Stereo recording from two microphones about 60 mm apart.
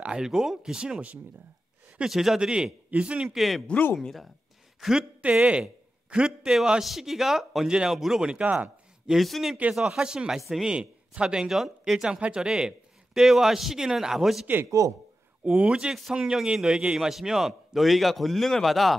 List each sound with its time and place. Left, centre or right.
0.0 s a man's voice: centre
2.0 s a man's voice: centre
3.3 s a man's voice: centre
5.2 s a man's voice: right
8.5 s speech: right
9.0 s a man's voice: centre
14.8 s a man's voice: right
15.4 s a man's voice: centre